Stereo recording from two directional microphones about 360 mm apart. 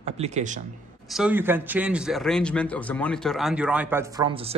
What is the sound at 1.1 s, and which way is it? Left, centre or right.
A man's voice, centre.